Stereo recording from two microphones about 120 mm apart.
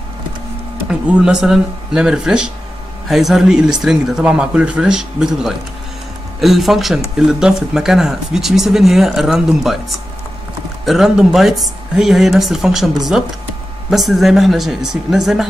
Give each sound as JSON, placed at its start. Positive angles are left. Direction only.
{"t": 0.8, "sound": "speech", "side_deg": -10}